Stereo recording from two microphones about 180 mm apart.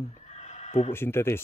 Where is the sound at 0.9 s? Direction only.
15° left (ahead or behind).